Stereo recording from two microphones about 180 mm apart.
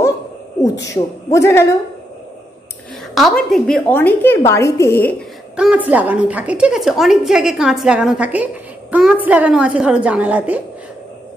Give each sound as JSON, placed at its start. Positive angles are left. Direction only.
{"t": 0.8, "sound": "a woman's voice", "side_deg": 15}
{"t": 3.2, "sound": "a woman's voice", "side_deg": 0}
{"t": 5.9, "sound": "a woman's voice", "side_deg": -10}